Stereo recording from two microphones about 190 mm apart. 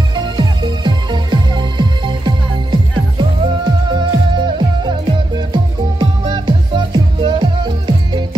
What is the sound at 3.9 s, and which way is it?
Music, 25° right (ahead or behind).